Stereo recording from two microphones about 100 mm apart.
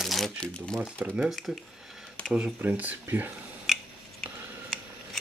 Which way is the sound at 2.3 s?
15° right (ahead or behind).